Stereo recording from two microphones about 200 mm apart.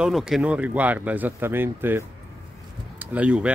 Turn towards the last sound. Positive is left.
turn(degrees=-5)  # may be behind; listen again after turning